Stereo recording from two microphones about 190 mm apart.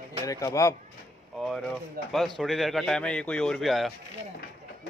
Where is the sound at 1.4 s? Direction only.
Centre (ahead or behind).